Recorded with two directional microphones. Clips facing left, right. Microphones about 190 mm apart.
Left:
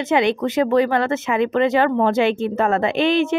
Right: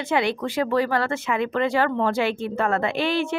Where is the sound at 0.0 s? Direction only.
20° left (ahead or behind).